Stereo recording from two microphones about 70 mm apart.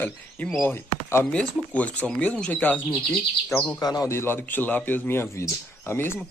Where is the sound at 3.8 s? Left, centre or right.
Left.